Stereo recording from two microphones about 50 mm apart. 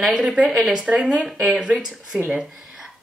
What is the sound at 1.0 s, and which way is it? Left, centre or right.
Speech, centre.